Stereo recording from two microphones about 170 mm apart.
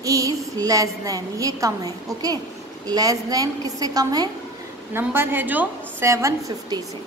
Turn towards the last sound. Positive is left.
turn(degrees=-20)  # may be behind; listen again after turning